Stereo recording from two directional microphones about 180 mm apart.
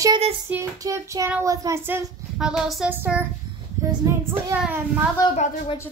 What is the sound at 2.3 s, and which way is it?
Child singing, centre (ahead or behind).